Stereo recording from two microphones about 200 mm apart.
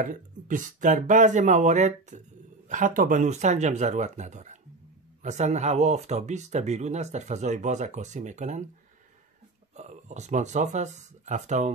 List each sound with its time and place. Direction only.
0.0 s speech: 40° right (ahead or behind)
9.8 s speech: 35° right (ahead or behind)